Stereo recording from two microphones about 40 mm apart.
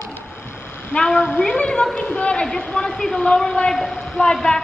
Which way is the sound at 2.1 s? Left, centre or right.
Left.